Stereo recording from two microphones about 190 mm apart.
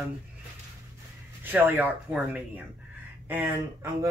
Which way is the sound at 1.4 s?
10° right (ahead or behind).